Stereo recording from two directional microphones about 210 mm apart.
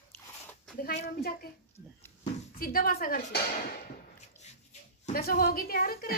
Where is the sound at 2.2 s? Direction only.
40° left (ahead or behind).